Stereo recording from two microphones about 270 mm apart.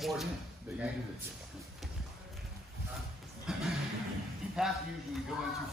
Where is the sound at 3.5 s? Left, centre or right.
Centre.